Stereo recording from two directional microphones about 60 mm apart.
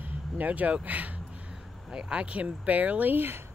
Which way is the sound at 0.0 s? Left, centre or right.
Right.